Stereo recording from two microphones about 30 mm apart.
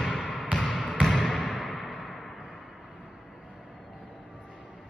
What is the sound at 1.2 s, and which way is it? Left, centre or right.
Basketball bounce, left.